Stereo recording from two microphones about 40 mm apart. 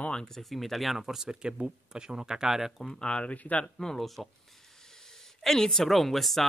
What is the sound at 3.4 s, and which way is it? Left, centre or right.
Speech, left.